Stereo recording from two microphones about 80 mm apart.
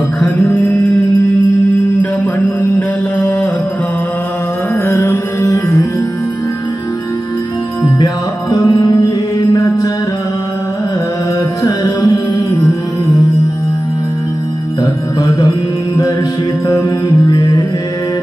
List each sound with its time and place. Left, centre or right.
0.2 s mantra: centre
4.8 s music: left
7.8 s music: left
15.2 s music: left